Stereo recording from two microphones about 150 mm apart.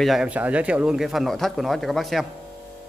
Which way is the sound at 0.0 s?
5° right (ahead or behind).